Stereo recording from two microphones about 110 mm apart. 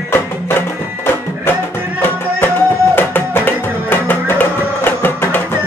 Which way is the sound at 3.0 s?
20° left (ahead or behind).